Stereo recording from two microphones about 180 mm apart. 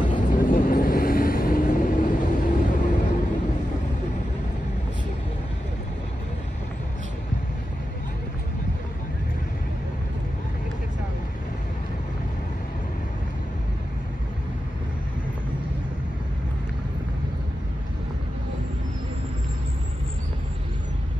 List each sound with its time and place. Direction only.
0.0 s vehicle: 50° left (ahead or behind)